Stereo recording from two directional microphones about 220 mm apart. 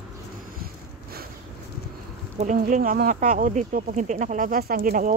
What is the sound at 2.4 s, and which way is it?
Speech, 35° right (ahead or behind).